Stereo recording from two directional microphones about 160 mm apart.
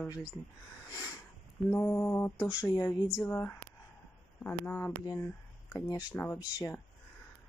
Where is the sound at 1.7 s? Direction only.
15° left (ahead or behind).